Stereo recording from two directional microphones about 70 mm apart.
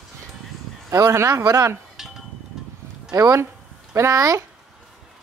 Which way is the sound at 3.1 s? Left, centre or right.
Right.